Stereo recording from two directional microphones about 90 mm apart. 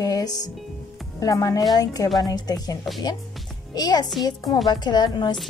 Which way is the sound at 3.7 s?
45° left (ahead or behind).